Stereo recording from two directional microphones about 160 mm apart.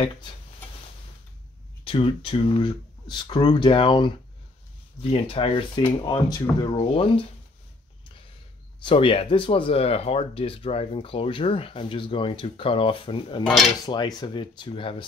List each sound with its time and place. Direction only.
1.9 s speech: 35° left (ahead or behind)
5.1 s speech: 35° left (ahead or behind)
8.8 s speech: 35° left (ahead or behind)